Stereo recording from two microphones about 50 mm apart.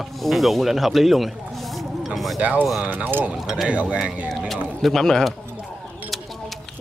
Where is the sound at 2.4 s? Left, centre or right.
Right.